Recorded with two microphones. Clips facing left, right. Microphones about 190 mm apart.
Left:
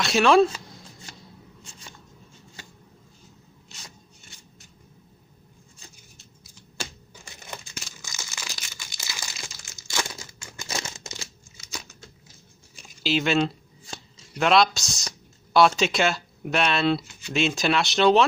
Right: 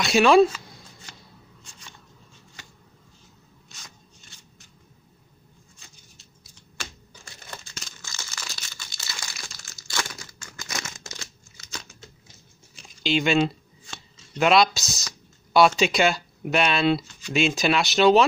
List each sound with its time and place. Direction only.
0.0 s speech: centre (ahead or behind)
7.2 s crumpling: 15° left (ahead or behind)
13.0 s speech: centre (ahead or behind)